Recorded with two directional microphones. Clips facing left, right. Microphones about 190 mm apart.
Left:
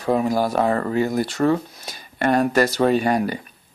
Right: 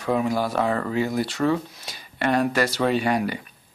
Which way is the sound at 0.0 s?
35° left (ahead or behind).